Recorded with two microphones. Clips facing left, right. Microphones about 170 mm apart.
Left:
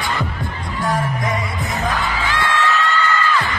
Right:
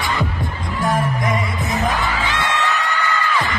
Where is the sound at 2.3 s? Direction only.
20° right (ahead or behind).